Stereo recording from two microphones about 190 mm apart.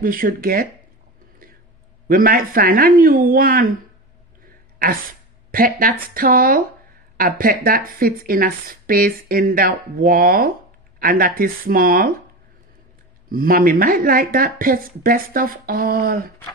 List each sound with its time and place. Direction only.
0.0 s speech: 50° right (ahead or behind)
2.0 s speech: 50° right (ahead or behind)
4.5 s a sound: 50° right (ahead or behind)
5.5 s speech: 50° right (ahead or behind)
13.3 s speech: 50° right (ahead or behind)